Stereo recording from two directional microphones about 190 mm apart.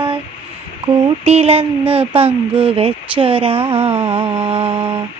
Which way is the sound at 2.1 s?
30° right (ahead or behind).